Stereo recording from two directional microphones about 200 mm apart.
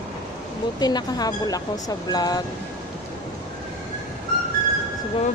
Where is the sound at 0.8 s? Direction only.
20° left (ahead or behind).